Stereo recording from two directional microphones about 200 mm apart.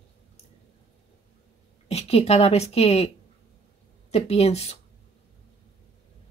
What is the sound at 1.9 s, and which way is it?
A woman's voice, 30° left (ahead or behind).